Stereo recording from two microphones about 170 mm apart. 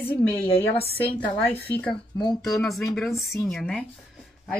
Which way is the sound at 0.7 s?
35° left (ahead or behind).